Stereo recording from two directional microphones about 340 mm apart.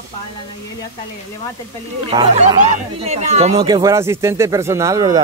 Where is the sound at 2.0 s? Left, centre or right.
Centre.